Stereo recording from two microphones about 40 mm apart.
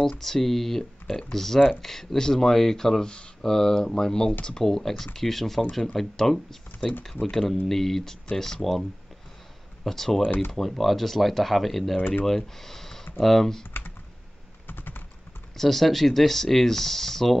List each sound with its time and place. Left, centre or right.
0.0 s speech: centre
9.8 s speech: centre
14.7 s typing: left
15.5 s speech: centre